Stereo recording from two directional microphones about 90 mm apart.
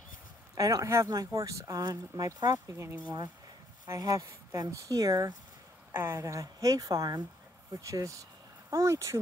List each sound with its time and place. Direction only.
0.6 s speech: 40° right (ahead or behind)
5.9 s speech: 25° right (ahead or behind)